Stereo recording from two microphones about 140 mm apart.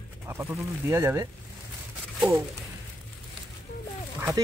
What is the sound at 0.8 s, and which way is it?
Speech, 15° right (ahead or behind).